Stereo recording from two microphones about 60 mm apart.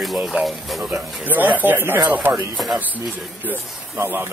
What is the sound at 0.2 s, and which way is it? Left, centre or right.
Speech, centre.